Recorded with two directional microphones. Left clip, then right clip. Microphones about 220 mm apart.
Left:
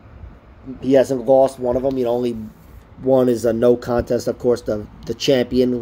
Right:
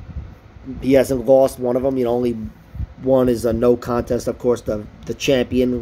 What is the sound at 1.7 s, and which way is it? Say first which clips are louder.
Speech: even; 25° right (ahead or behind).